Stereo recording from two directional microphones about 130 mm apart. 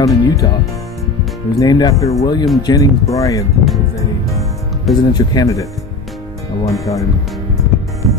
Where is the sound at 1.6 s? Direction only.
30° left (ahead or behind).